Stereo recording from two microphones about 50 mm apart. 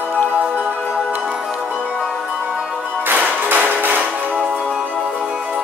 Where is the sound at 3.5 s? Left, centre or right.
Right.